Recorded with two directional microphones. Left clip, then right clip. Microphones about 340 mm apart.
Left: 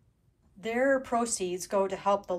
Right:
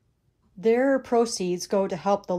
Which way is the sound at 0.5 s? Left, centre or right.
Centre.